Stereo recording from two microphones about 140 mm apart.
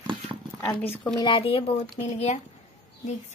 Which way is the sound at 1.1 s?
35° left (ahead or behind).